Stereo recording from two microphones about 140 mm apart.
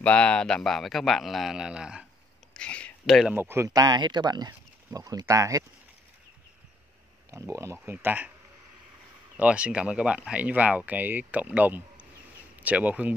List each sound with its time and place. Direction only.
0.0 s a man's voice: 10° left (ahead or behind)
2.5 s a sound: 10° left (ahead or behind)
3.3 s speech: 15° right (ahead or behind)
7.2 s speech: 20° right (ahead or behind)
9.4 s speech: 10° right (ahead or behind)